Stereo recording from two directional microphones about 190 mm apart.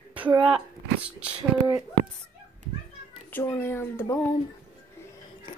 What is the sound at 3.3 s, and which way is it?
Speech, 10° left (ahead or behind).